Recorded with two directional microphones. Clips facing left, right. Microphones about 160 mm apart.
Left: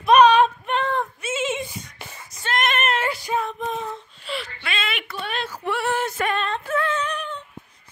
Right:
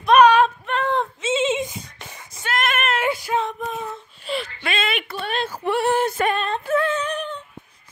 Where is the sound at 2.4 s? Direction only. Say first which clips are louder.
Even; 5° right (ahead or behind).